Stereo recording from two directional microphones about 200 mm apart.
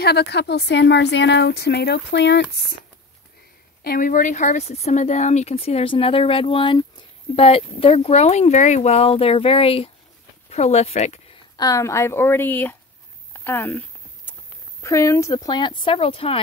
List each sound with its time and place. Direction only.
0.0 s speech: 55° left (ahead or behind)
3.8 s speech: 45° left (ahead or behind)
11.5 s speech: 15° left (ahead or behind)
13.3 s a sound: 10° left (ahead or behind)
14.8 s speech: 15° left (ahead or behind)